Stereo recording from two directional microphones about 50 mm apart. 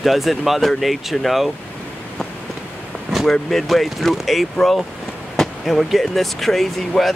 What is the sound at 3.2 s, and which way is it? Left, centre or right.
Speech, centre.